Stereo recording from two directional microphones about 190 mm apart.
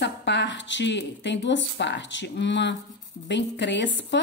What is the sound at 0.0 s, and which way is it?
A woman's voice, 70° left (ahead or behind).